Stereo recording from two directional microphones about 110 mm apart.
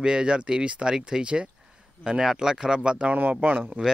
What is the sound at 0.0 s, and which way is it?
Speech, 5° right (ahead or behind).